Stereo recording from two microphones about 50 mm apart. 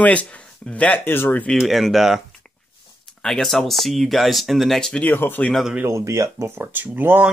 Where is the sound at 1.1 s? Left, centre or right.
Left.